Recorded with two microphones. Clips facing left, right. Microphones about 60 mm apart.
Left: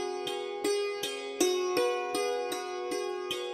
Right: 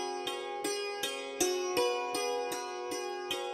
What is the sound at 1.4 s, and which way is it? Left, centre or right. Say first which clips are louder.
Music: left 3 dB; left.